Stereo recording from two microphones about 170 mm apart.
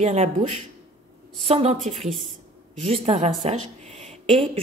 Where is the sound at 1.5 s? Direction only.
35° right (ahead or behind).